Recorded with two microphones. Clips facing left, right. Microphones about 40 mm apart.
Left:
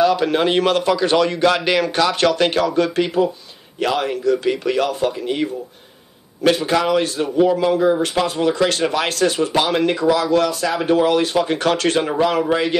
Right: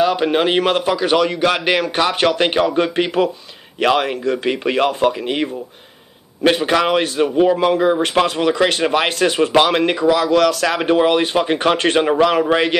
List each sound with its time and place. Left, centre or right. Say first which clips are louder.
0.0 s a man's voice: even; right
3.8 s speech: right 2 dB; right
8.5 s speech: right 2 dB; right